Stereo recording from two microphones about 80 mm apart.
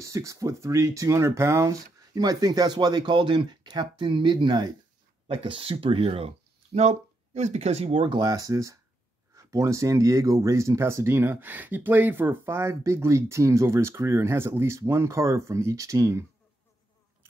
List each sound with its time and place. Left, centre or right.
0.0 s speech: right
5.3 s speech: right
7.9 s speech: right
8.2 s speech: right